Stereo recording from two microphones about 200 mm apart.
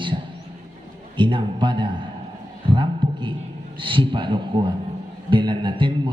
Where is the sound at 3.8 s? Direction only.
25° right (ahead or behind).